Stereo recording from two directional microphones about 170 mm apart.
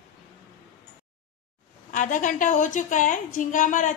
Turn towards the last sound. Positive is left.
turn(degrees=45)  # may be behind; listen again after turning